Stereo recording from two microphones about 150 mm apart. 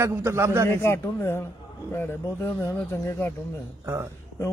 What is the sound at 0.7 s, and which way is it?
A man's voice, 15° left (ahead or behind).